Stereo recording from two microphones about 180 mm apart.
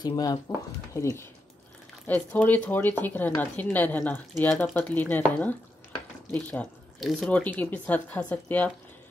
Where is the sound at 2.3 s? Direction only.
10° left (ahead or behind).